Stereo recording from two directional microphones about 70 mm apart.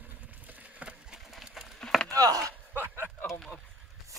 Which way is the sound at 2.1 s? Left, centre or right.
Right.